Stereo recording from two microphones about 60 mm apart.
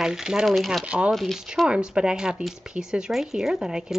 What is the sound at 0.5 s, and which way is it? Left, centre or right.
Speech, centre.